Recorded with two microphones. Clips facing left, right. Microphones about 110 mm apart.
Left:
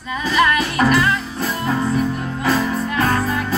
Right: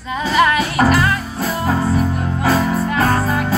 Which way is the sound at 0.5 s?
30° right (ahead or behind).